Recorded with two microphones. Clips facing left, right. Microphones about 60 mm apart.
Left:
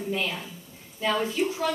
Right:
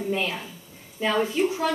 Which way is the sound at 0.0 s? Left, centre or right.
Centre.